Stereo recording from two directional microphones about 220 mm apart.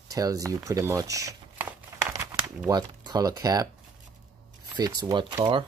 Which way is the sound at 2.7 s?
20° right (ahead or behind).